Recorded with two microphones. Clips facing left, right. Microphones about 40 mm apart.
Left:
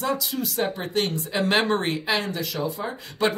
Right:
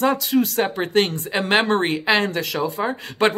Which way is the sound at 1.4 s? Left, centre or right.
Right.